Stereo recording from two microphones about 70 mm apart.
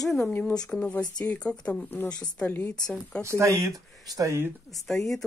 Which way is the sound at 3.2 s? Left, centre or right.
Right.